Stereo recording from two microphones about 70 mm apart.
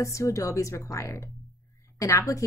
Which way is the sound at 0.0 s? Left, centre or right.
Left.